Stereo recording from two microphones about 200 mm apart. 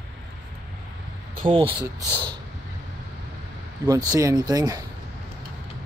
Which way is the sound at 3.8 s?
15° right (ahead or behind).